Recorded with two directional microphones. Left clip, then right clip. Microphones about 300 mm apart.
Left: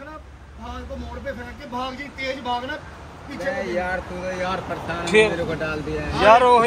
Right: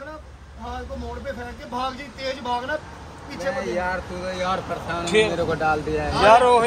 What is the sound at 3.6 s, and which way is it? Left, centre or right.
Speech, centre.